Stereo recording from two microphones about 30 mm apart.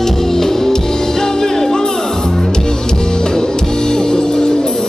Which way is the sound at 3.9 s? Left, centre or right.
Left.